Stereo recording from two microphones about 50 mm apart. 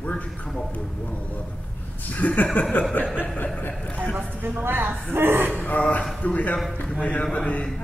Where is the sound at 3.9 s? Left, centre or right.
Left.